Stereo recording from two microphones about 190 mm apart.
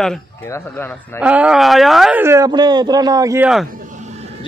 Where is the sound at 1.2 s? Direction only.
5° right (ahead or behind).